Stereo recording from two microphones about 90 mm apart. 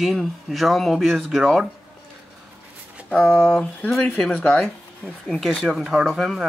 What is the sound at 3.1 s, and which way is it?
Speech, 10° left (ahead or behind).